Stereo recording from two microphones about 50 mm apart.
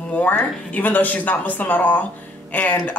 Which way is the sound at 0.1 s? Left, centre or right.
Left.